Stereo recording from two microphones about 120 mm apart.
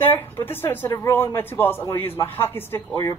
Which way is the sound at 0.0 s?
15° left (ahead or behind).